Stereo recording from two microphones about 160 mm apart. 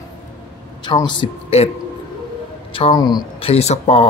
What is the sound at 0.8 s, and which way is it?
Speech, 30° left (ahead or behind).